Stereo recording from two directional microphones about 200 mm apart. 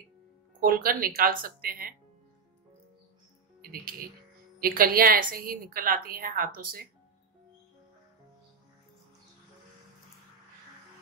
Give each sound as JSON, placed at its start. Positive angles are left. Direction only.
{"t": 0.6, "sound": "a woman's voice", "side_deg": -45}
{"t": 4.6, "sound": "a woman's voice", "side_deg": -45}